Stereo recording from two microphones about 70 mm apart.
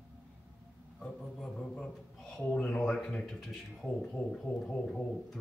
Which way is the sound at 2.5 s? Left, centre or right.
Centre.